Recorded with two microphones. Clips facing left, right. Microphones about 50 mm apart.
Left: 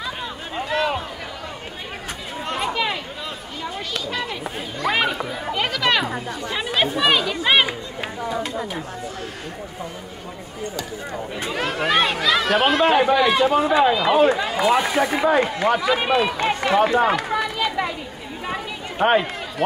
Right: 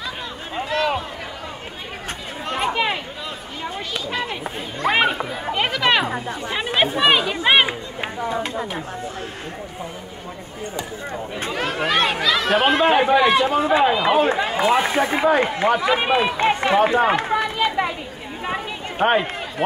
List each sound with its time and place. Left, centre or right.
2.6 s chatter: right
4.2 s chatter: right
5.5 s a sound: right
6.4 s chatter: right
8.3 s chatter: right
11.5 s speech: centre
12.7 s a man's voice: centre
14.3 s speech: right
17.2 s chatter: right
18.9 s a man's voice: centre